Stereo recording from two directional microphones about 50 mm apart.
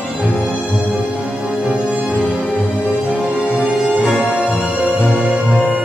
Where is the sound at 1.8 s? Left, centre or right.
Right.